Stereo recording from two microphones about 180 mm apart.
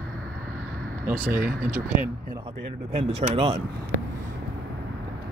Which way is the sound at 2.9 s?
35° right (ahead or behind).